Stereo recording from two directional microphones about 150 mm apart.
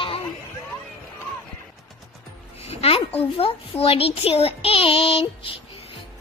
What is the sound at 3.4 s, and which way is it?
Child singing, 40° left (ahead or behind).